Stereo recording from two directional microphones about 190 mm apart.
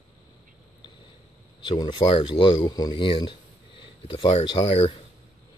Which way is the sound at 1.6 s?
25° left (ahead or behind).